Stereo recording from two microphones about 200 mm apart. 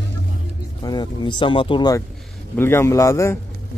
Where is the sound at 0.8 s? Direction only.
20° left (ahead or behind).